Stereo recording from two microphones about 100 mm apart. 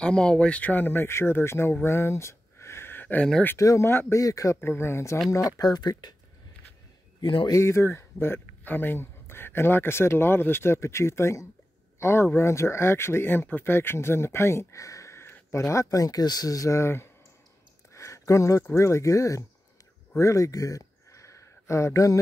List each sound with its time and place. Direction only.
0.0 s speech: 10° left (ahead or behind)
3.5 s speech: 30° left (ahead or behind)
4.2 s speech: 35° left (ahead or behind)
4.6 s speech: 25° left (ahead or behind)
5.6 s speech: 45° left (ahead or behind)
7.4 s speech: 30° left (ahead or behind)
20.2 s a sound: 30° left (ahead or behind)